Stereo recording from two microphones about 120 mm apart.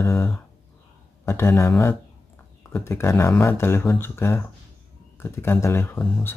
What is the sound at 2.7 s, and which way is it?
Speech, 20° left (ahead or behind).